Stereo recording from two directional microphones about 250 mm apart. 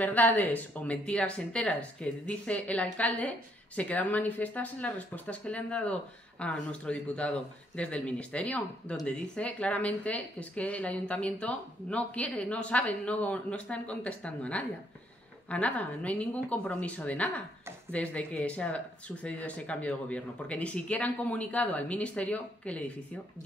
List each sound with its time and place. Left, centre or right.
0.0 s a woman's voice: centre